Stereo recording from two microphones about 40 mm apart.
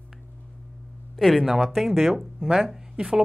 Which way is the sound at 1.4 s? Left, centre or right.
Centre.